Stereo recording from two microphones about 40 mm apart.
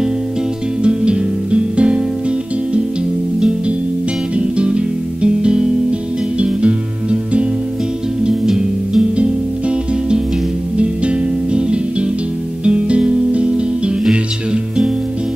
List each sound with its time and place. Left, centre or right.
0.8 s music: right
3.3 s music: right
9.1 s music: right